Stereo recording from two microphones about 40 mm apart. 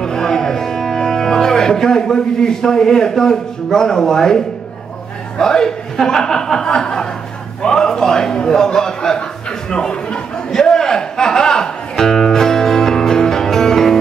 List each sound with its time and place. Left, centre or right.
0.0 s music: centre
5.4 s a man's voice: centre
9.7 s a sound: left
10.6 s music: centre